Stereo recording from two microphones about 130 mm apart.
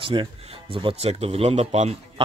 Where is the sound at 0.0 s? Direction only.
40° right (ahead or behind).